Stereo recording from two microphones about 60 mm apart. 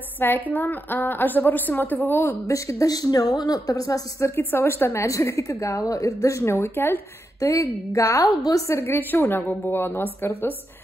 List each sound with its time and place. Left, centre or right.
0.2 s a woman's voice: left
2.4 s speech: left
4.4 s a woman's voice: left
6.5 s a woman's voice: left
7.3 s a woman's voice: left
8.4 s speech: left
8.6 s a woman's voice: left